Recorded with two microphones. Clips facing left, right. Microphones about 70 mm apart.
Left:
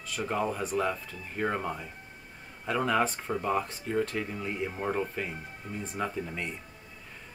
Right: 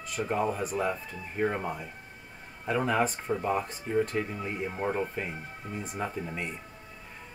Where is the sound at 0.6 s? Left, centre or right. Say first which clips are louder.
Even; centre.